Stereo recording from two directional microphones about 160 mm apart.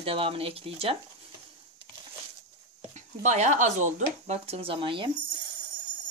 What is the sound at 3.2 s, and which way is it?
Speech, 50° right (ahead or behind).